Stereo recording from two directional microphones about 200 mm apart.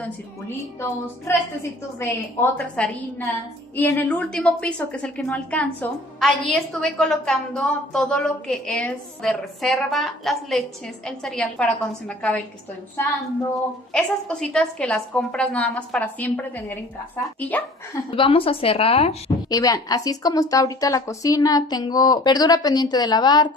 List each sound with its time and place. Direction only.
0.0 s a woman's voice: 10° left (ahead or behind)
13.9 s a woman's voice: 5° left (ahead or behind)
18.1 s a woman's voice: 25° left (ahead or behind)
19.5 s a woman's voice: 20° left (ahead or behind)